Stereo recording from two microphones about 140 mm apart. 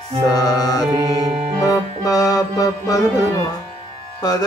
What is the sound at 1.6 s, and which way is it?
Music, 25° left (ahead or behind).